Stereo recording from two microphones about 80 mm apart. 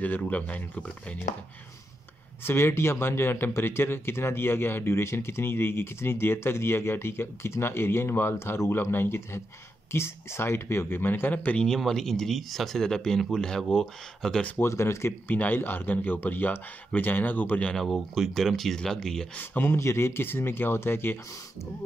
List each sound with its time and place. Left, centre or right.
0.0 s speech: left
2.4 s speech: left
11.6 s speech: centre
14.6 s speech: left
15.2 s speech: left
17.7 s speech: centre
19.3 s speech: left